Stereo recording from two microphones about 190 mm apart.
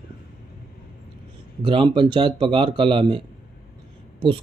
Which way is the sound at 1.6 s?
25° right (ahead or behind).